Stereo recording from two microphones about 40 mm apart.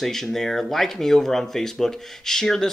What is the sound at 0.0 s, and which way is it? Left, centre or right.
Speech, centre.